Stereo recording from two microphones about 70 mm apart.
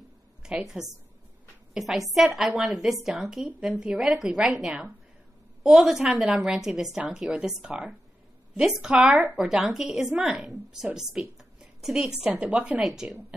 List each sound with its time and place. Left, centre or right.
0.4 s a woman's voice: centre
5.6 s a woman's voice: centre
8.9 s speech: right
9.4 s a woman's voice: centre